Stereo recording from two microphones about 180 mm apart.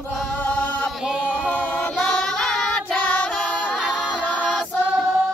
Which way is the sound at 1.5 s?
10° left (ahead or behind).